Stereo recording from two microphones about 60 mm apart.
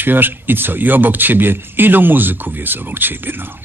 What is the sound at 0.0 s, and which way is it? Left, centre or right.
Speech, right.